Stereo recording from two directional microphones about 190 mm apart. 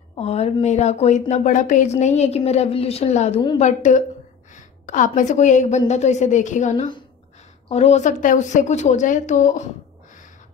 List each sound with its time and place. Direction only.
0.1 s a woman's voice: 35° left (ahead or behind)